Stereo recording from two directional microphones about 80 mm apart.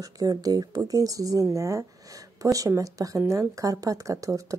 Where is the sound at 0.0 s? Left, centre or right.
Right.